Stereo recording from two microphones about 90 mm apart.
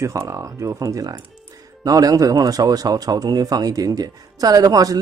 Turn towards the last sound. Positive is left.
turn(degrees=-40)  # may be behind; listen again after turning